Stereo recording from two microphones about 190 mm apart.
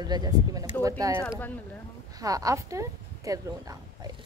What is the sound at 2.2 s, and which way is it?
Speech, 20° right (ahead or behind).